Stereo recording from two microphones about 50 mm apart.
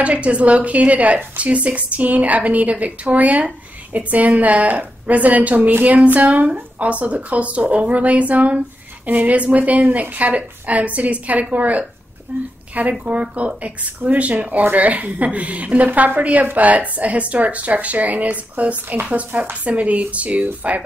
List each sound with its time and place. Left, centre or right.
0.0 s a woman's voice: right